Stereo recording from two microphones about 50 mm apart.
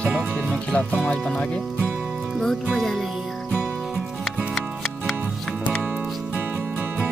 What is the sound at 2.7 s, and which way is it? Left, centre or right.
Speech, centre.